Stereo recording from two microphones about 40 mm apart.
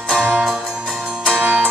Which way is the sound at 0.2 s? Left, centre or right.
Centre.